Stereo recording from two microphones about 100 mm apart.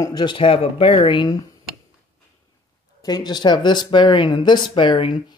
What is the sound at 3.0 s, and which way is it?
Speech, 40° left (ahead or behind).